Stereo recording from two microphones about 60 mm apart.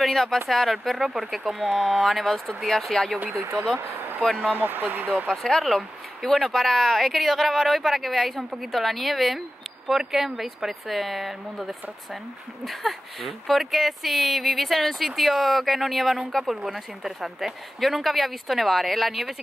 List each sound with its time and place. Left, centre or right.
0.0 s speech: centre
4.4 s speech: right
5.1 s speech: centre